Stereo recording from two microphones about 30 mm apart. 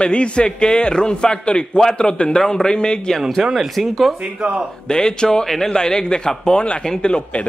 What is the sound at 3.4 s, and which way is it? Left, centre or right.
Speech, centre.